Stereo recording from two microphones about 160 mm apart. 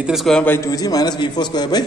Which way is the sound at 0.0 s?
Centre (ahead or behind).